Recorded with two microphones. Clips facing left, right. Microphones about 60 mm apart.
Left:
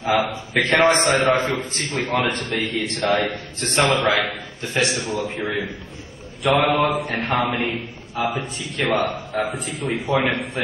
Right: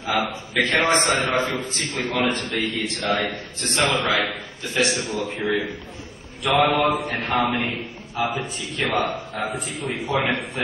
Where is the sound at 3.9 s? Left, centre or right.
Left.